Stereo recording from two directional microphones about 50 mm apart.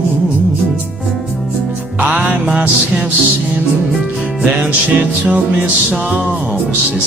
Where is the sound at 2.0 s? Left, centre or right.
Right.